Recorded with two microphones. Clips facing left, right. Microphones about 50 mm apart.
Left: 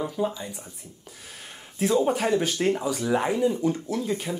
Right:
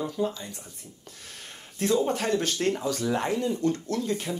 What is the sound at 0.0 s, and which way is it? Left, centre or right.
Speech, centre.